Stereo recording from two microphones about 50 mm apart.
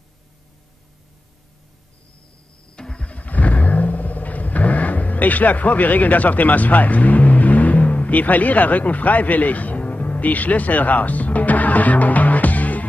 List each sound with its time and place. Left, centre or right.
2.7 s vehicle: centre
3.1 s vehicle: left